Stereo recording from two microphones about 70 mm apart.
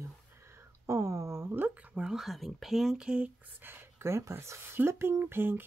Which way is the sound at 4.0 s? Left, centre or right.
Right.